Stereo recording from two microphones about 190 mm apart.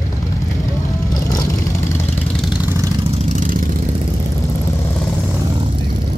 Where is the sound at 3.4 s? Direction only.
45° right (ahead or behind).